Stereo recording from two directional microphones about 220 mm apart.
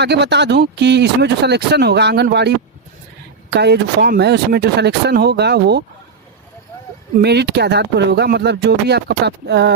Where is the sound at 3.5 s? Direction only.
50° right (ahead or behind).